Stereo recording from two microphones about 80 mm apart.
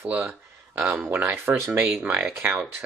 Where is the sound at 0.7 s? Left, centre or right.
Right.